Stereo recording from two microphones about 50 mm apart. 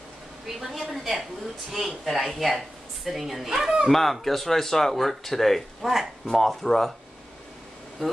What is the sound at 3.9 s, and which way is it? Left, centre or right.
Speech, centre.